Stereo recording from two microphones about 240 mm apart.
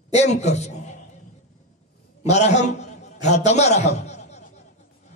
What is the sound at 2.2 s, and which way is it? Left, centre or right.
A man's voice, left.